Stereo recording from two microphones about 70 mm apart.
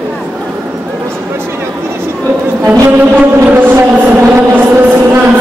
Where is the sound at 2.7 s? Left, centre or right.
Right.